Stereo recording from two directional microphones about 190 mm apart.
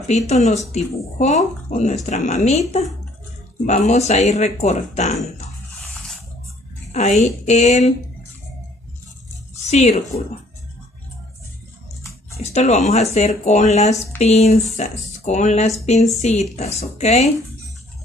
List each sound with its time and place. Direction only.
0.0 s speech: 35° left (ahead or behind)
3.6 s speech: 35° left (ahead or behind)
6.9 s speech: 35° left (ahead or behind)
9.7 s speech: 35° left (ahead or behind)
12.5 s speech: 35° left (ahead or behind)